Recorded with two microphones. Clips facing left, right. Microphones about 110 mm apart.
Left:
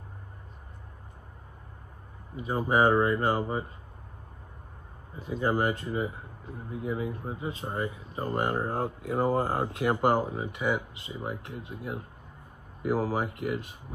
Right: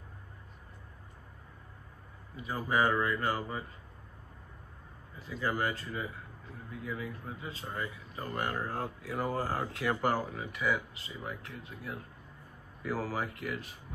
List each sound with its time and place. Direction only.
2.3 s speech: 25° left (ahead or behind)
5.1 s speech: 25° left (ahead or behind)
8.0 s speech: 35° left (ahead or behind)